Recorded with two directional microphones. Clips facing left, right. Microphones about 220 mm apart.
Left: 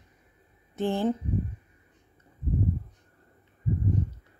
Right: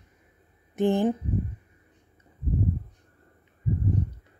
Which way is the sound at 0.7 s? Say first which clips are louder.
Right 4 dB; 15° right (ahead or behind).